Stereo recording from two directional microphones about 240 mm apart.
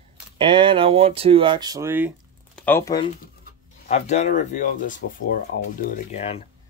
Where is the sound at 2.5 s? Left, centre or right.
Centre.